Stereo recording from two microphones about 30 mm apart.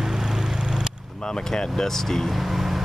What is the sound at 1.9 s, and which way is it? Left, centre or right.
Speech, centre.